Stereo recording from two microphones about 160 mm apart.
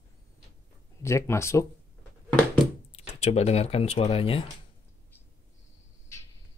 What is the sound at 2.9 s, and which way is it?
Speech, 40° left (ahead or behind).